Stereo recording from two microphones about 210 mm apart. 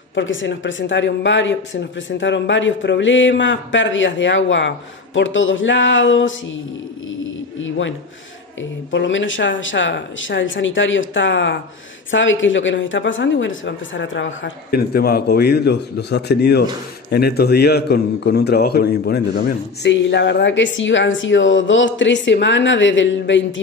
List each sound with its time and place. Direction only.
0.1 s a man's voice: 65° left (ahead or behind)
7.6 s a man's voice: 65° left (ahead or behind)